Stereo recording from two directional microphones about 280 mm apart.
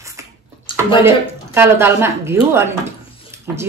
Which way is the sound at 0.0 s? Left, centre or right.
Centre.